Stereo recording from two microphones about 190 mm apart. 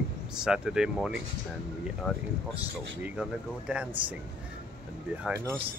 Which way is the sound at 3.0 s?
5° right (ahead or behind).